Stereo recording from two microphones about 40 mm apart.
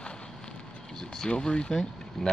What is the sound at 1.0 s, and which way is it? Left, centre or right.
Speech, centre.